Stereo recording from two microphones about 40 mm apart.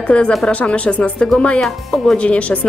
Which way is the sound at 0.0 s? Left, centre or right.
Left.